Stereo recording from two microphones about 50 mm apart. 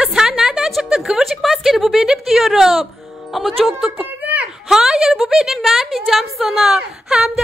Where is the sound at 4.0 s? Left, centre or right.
Right.